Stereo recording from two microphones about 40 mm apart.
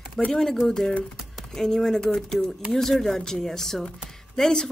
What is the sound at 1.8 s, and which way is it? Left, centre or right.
Speech, centre.